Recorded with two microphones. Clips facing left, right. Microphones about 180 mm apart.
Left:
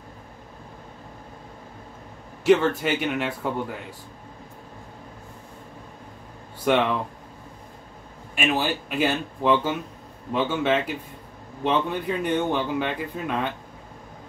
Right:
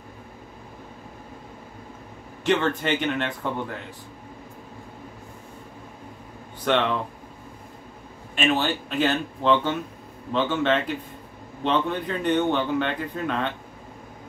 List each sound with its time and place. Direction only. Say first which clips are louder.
2.4 s speech: left 4 dB; 5° left (ahead or behind)
6.6 s speech: left 1 dB; 10° left (ahead or behind)
8.4 s speech: right 1 dB; 10° left (ahead or behind)